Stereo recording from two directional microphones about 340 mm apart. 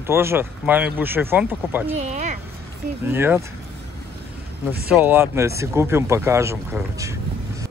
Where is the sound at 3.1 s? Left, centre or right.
Centre.